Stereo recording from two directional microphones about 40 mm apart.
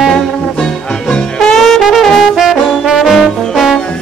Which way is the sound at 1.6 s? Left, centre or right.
Centre.